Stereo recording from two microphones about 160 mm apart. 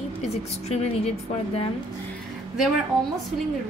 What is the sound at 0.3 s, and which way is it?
Speech, 40° left (ahead or behind).